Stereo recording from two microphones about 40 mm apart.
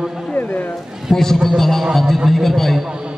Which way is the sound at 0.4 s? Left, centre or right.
Left.